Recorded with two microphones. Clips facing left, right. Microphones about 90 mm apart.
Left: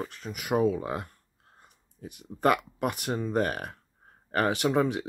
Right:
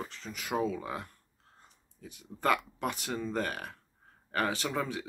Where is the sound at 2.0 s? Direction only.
55° left (ahead or behind).